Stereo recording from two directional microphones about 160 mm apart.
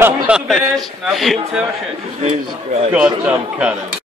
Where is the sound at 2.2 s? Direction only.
45° right (ahead or behind).